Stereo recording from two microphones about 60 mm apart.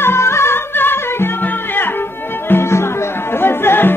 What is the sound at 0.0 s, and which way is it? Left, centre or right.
Music, left.